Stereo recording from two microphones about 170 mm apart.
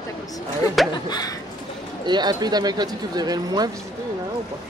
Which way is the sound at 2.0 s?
25° right (ahead or behind).